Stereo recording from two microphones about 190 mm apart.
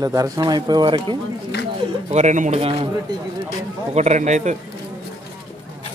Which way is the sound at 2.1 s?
40° right (ahead or behind).